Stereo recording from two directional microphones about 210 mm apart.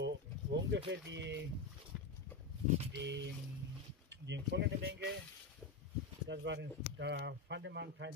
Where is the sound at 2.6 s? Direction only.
30° right (ahead or behind).